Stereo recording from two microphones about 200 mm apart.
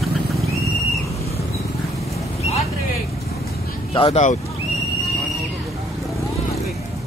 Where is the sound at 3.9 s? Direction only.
30° left (ahead or behind).